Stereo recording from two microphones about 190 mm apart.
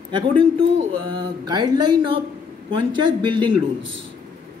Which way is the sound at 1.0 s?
25° right (ahead or behind).